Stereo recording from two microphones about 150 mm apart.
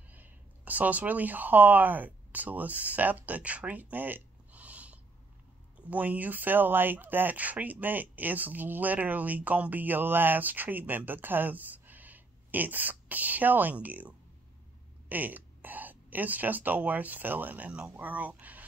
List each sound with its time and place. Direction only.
0.1 s speech: 10° right (ahead or behind)